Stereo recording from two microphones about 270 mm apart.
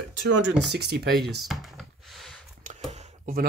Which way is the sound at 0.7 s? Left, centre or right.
Right.